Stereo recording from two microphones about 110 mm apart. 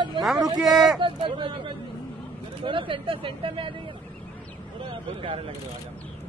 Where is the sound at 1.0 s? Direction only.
45° right (ahead or behind).